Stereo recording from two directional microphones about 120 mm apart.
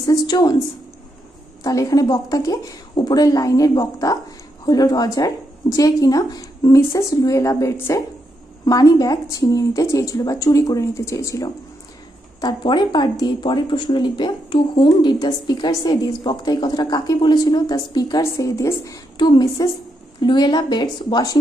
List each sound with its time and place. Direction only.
0.0 s speech: 30° left (ahead or behind)
1.6 s speech: 30° left (ahead or behind)
18.2 s speech: 25° left (ahead or behind)
19.1 s a woman's voice: 35° left (ahead or behind)